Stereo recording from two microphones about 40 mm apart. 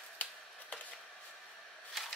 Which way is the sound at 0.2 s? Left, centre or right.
Left.